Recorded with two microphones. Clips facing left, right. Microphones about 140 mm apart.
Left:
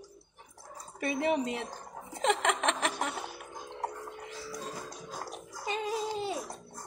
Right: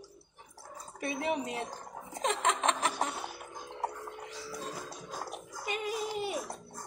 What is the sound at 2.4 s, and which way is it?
Chuckle, 90° left.